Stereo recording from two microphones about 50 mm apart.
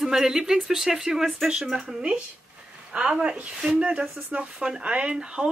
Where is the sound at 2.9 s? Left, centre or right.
Right.